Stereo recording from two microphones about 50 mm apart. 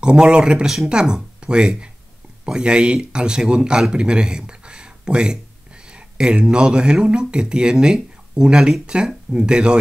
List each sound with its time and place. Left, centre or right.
0.0 s speech: centre